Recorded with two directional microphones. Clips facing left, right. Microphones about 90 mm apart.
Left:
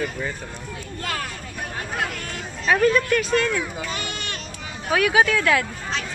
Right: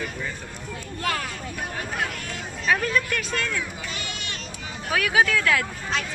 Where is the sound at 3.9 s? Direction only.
50° left (ahead or behind).